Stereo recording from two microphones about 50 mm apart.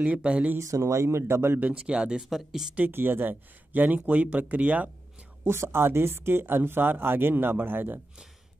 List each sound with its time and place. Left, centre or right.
0.0 s speech: right
0.6 s speech: right
1.3 s speech: right
1.6 s speech: right
2.2 s speech: centre
2.9 s speech: right
5.4 s speech: right